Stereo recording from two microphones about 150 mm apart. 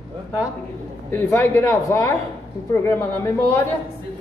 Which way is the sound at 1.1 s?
15° left (ahead or behind).